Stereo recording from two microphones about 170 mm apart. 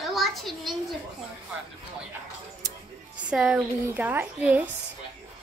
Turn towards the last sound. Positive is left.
turn(degrees=-10)  # may be behind; listen again after turning